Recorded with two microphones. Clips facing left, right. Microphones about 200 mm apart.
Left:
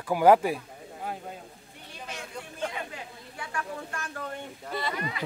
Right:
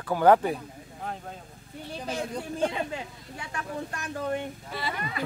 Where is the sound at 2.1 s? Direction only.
35° right (ahead or behind).